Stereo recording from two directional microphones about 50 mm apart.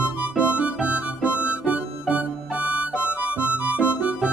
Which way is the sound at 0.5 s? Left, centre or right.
Right.